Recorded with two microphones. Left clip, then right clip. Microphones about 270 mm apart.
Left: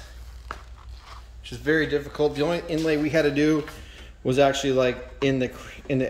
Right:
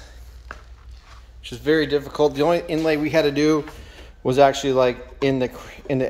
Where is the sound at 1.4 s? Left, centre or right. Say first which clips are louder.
Right 3 dB; centre.